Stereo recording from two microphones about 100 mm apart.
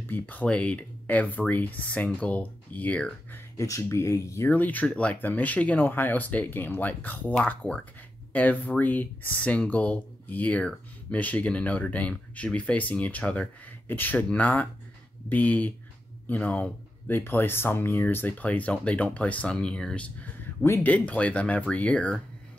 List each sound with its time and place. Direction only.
0.1 s speech: 15° left (ahead or behind)
3.5 s speech: 30° left (ahead or behind)
4.5 s speech: 15° left (ahead or behind)